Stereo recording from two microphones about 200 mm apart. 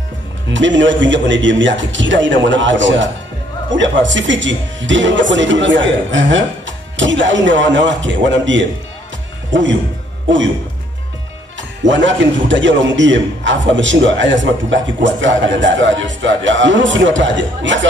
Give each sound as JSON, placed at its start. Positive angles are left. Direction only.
{"t": 0.5, "sound": "a man's voice", "side_deg": -65}
{"t": 11.8, "sound": "a man's voice", "side_deg": -65}